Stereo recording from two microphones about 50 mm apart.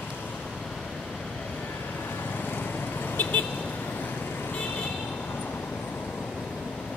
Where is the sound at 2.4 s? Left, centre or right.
Left.